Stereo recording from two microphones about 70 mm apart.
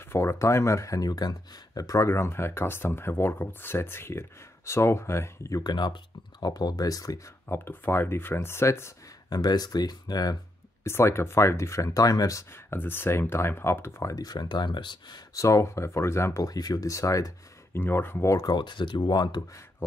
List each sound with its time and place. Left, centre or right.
0.0 s speech: left
2.0 s speech: left
5.6 s speech: left
6.4 s speech: left
7.4 s speech: left
9.3 s speech: left
10.8 s speech: left
12.4 s speech: left
14.1 s speech: left
15.3 s speech: left
16.4 s speech: left
17.7 s speech: left
18.4 s speech: left